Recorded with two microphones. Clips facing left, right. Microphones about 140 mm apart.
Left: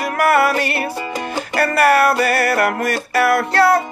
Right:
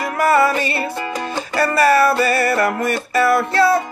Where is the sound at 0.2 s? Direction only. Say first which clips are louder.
Even; 65° left (ahead or behind).